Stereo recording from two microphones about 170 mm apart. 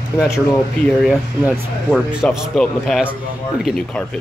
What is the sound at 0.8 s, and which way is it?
Speech, 5° left (ahead or behind).